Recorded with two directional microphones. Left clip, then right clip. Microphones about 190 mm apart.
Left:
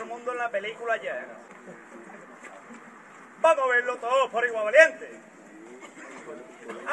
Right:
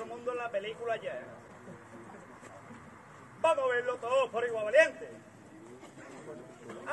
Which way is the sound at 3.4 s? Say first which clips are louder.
Left 7 dB; 20° right (ahead or behind).